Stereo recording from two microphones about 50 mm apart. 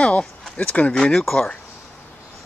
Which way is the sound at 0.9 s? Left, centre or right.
Centre.